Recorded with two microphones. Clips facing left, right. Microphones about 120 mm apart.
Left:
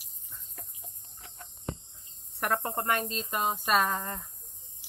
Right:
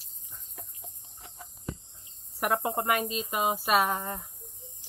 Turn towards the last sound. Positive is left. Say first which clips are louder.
# right 6 dB
turn(degrees=10)  # may be behind; listen again after turning